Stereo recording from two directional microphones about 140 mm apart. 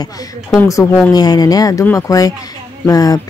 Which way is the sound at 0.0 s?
25° left (ahead or behind).